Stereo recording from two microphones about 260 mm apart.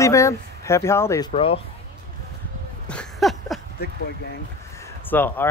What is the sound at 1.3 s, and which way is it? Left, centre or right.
Speech, left.